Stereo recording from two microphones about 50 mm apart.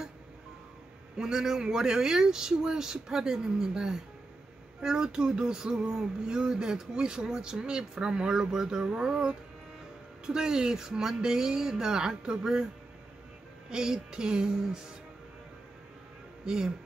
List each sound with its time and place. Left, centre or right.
1.1 s speech: centre
13.7 s speech: centre
16.4 s speech: centre